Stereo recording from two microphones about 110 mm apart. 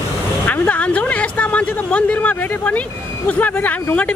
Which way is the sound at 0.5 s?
15° left (ahead or behind).